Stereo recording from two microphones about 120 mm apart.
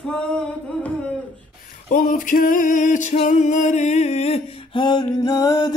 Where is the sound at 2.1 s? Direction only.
90° left.